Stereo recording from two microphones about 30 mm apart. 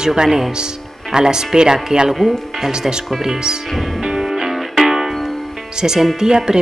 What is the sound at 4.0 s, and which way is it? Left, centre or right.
Music, right.